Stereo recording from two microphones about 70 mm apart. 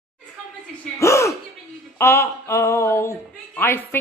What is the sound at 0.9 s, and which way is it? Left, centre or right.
Speech, left.